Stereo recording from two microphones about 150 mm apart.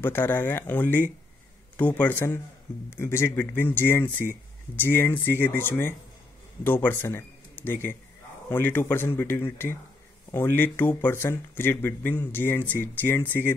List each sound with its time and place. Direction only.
0.0 s a man's voice: 15° left (ahead or behind)